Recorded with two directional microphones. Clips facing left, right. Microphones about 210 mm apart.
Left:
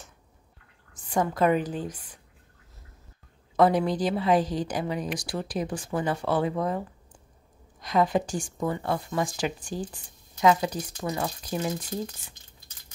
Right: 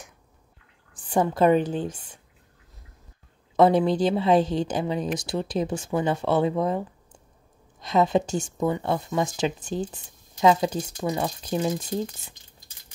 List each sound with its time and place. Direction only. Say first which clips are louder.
0.9 s a woman's voice: right 3 dB; 30° right (ahead or behind)
3.5 s a woman's voice: right 3 dB; 25° right (ahead or behind)